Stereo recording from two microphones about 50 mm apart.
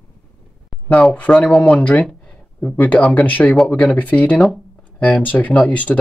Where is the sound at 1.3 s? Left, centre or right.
Left.